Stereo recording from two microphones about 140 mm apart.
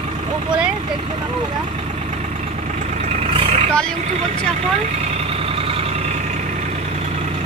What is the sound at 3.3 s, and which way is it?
Vehicle, 45° right (ahead or behind).